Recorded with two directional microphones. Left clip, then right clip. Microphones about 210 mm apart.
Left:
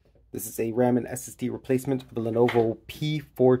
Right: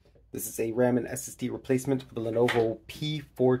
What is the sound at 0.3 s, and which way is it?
Speech, 25° left (ahead or behind).